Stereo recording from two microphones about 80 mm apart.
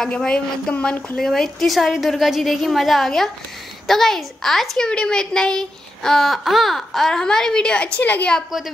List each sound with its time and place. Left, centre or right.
0.0 s a woman's voice: centre